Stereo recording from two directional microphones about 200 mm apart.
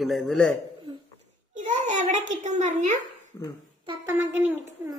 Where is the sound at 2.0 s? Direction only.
35° right (ahead or behind).